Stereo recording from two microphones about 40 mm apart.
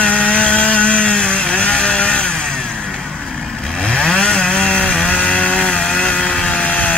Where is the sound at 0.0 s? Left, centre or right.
Left.